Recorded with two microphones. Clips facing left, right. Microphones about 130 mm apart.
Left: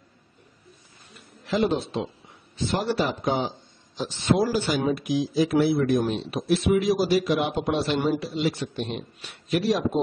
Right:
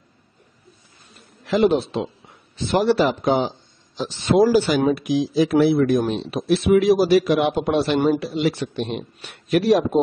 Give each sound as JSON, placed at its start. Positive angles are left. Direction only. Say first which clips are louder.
{"t": 1.5, "sound": "a man's voice", "louder": "right 6 dB", "side_deg": -75}
{"t": 2.7, "sound": "a man's voice", "louder": "right 8 dB", "side_deg": -85}